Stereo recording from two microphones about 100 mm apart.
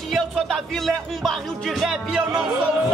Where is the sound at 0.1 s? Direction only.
Centre (ahead or behind).